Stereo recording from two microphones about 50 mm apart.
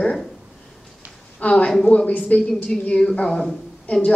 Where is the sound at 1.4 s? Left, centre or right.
Left.